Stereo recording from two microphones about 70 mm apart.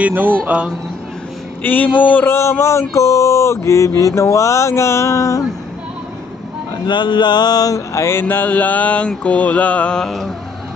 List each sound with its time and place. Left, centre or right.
0.0 s speech: right
1.6 s mantra: left
2.3 s a sound: left
2.9 s mantra: left
6.9 s mantra: left
9.9 s mantra: centre